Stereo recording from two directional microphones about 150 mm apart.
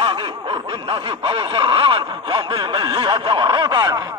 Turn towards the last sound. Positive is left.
turn(degrees=-25)  # may be behind; listen again after turning